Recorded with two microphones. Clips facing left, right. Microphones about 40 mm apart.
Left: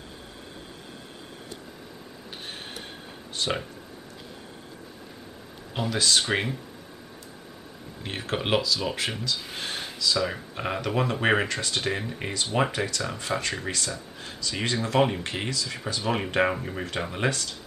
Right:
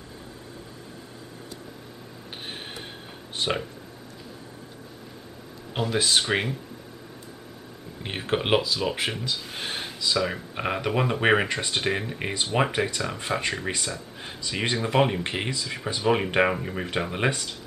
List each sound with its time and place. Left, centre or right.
2.4 s mechanisms: centre
3.4 s a sound: right
5.9 s speech: centre
6.2 s speech: centre
8.0 s speech: centre
12.4 s speech: centre
12.7 s speech: centre